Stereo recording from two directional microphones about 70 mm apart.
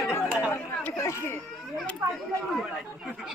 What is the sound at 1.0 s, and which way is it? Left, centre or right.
Speech, left.